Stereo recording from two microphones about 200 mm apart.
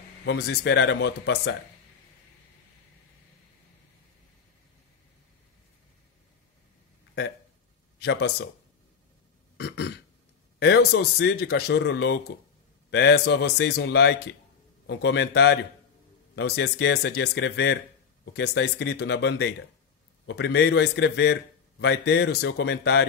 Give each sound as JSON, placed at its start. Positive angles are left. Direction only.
{"t": 0.2, "sound": "a man's voice", "side_deg": 60}
{"t": 8.0, "sound": "a man's voice", "side_deg": 55}
{"t": 9.6, "sound": "a man's voice", "side_deg": 60}